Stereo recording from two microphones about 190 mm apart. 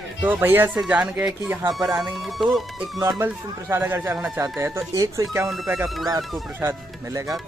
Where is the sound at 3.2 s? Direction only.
10° right (ahead or behind).